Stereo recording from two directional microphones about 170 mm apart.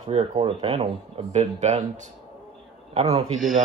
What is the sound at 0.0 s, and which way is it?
A man's voice, 35° right (ahead or behind).